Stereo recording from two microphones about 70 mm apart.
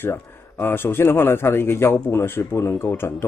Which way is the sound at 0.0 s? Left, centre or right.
Left.